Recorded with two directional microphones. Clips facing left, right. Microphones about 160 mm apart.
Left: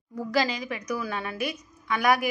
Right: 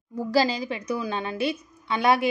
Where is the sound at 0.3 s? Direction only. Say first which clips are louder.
Right 4 dB; 30° right (ahead or behind).